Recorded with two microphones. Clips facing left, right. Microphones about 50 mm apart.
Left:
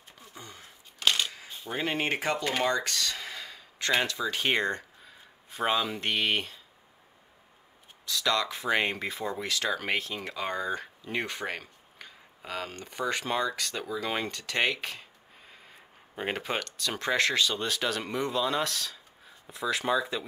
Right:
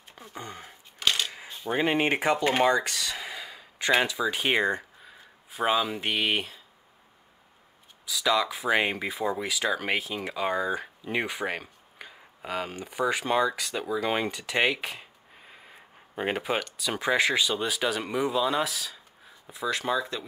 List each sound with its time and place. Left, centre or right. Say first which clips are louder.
0.2 s speech: right 7 dB; right
1.2 s camera: right 1 dB; centre
1.7 s speech: right 5 dB; centre
8.0 s speech: right 3 dB; centre